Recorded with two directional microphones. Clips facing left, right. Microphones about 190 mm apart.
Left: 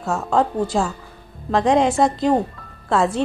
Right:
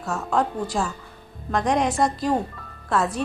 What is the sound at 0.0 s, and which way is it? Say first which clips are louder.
Speech: left 4 dB; 25° left (ahead or behind).